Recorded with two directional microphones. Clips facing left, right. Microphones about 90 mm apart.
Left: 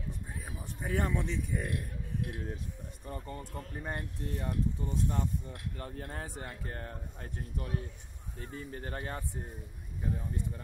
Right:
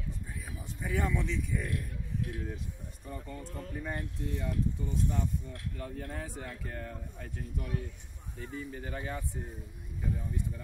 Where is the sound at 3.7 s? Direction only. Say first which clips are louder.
Right 2 dB; 35° left (ahead or behind).